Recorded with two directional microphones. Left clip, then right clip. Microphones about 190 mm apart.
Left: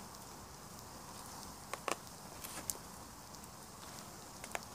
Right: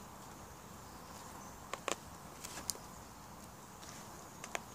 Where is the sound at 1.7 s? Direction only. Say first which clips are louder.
Even; centre (ahead or behind).